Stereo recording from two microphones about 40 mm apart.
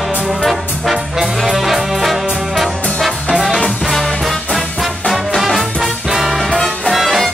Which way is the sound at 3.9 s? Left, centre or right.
Centre.